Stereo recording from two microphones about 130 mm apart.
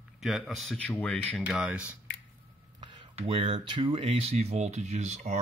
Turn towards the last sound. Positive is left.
turn(degrees=-60)  # may be behind; listen again after turning